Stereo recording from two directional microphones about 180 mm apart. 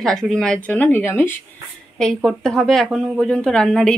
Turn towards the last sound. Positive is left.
turn(degrees=5)  # may be behind; listen again after turning